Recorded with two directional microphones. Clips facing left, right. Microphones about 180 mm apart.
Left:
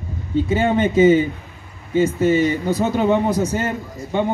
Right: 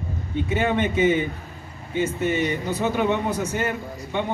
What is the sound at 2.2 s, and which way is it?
Speech, 40° left (ahead or behind).